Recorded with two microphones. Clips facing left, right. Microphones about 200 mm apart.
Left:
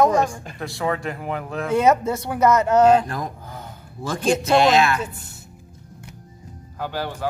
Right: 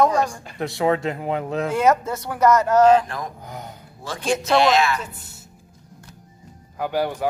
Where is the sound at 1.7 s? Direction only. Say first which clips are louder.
Left 3 dB; 20° left (ahead or behind).